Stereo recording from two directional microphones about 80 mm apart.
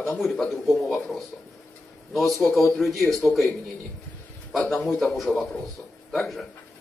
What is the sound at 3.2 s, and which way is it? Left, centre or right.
Speech, centre.